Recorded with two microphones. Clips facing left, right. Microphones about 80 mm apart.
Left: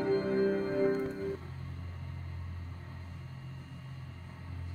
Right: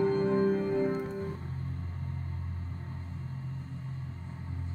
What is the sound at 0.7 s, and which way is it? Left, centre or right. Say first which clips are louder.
Organ: even; right.